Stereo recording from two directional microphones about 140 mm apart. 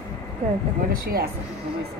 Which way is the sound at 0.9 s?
90° right.